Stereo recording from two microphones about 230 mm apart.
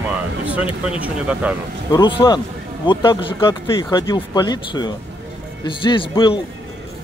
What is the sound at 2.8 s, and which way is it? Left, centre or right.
Speech, centre.